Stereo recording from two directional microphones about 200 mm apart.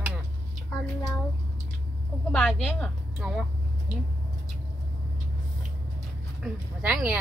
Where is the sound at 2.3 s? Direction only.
5° left (ahead or behind).